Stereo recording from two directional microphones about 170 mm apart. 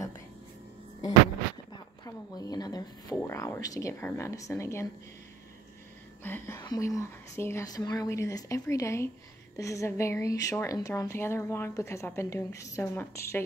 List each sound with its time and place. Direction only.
1.7 s a woman's voice: 20° left (ahead or behind)
6.2 s a woman's voice: 15° left (ahead or behind)